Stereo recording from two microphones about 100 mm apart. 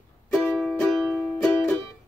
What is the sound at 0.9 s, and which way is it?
Music, 5° right (ahead or behind).